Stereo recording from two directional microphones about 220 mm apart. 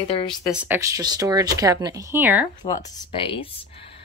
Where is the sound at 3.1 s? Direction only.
25° left (ahead or behind).